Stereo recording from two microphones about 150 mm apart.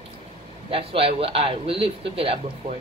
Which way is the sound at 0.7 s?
40° right (ahead or behind).